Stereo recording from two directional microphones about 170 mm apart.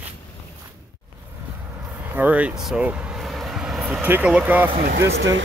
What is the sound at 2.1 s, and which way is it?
Speech, 10° right (ahead or behind).